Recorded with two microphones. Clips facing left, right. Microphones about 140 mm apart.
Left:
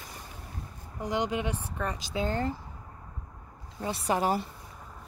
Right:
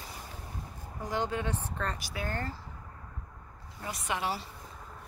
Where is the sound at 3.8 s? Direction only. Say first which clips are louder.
Left 6 dB; 30° left (ahead or behind); by 4.5 s 50° left (ahead or behind).